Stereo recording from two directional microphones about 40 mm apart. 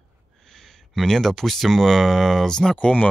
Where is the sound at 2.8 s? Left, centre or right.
Left.